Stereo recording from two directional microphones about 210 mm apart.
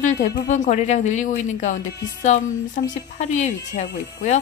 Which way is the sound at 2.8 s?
40° left (ahead or behind).